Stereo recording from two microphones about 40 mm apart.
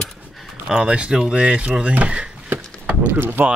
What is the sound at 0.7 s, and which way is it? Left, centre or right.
Speech, right.